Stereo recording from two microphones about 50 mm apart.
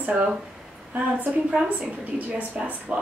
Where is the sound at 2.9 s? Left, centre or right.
Right.